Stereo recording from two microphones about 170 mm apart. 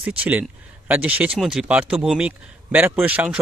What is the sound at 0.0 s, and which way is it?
A man's voice, 10° right (ahead or behind).